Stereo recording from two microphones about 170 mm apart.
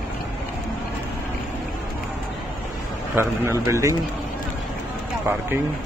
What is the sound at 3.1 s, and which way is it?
Speech, 15° right (ahead or behind).